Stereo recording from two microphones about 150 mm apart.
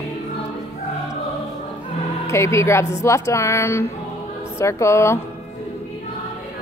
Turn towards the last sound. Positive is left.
turn(degrees=20)  # may be behind; listen again after turning